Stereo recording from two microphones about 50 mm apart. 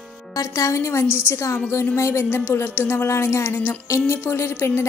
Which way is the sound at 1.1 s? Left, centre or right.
Left.